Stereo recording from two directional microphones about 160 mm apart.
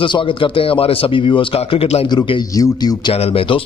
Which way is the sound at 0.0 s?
30° left (ahead or behind).